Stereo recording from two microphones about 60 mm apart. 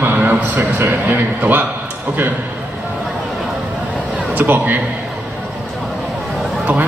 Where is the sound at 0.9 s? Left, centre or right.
Right.